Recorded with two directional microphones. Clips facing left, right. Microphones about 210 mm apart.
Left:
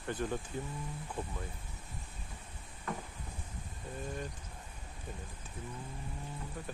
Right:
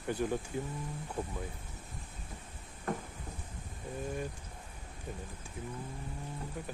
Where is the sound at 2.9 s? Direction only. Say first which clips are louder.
Right 4 dB; 45° right (ahead or behind).